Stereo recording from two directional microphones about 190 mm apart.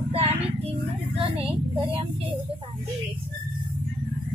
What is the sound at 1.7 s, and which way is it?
Speech, 25° right (ahead or behind).